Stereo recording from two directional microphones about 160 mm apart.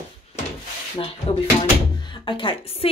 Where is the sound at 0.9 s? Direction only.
35° left (ahead or behind).